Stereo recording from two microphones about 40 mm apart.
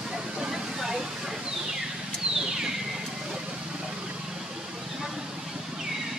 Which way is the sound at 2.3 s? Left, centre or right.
Centre.